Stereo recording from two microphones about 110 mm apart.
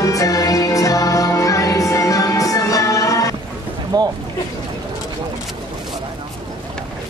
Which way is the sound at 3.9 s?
40° right (ahead or behind).